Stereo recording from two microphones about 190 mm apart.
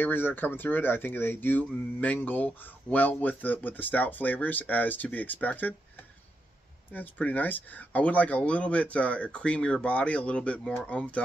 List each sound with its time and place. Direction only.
0.0 s speech: 10° left (ahead or behind)
6.9 s speech: 10° left (ahead or behind)